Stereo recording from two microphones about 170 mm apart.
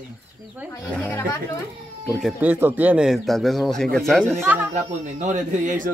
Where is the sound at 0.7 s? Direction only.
10° left (ahead or behind).